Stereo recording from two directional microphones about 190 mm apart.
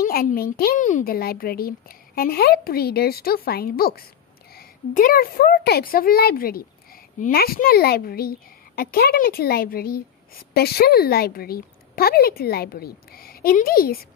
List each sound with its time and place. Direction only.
0.0 s a woman's voice: 50° left (ahead or behind)